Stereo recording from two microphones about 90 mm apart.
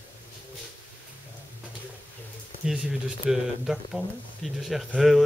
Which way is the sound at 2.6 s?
5° right (ahead or behind).